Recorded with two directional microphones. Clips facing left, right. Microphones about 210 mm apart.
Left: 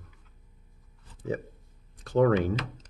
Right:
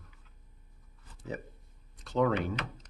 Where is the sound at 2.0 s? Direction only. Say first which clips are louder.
Left 6 dB; 50° left (ahead or behind).